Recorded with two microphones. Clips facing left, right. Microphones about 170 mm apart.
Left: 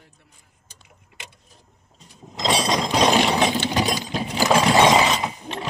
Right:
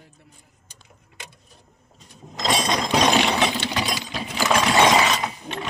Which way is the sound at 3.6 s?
45° left (ahead or behind).